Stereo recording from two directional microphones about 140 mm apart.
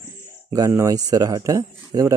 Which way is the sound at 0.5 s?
25° right (ahead or behind).